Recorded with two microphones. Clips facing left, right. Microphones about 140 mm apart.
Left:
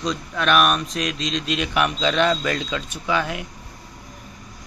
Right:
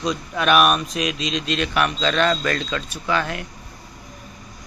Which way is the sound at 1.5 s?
15° left (ahead or behind).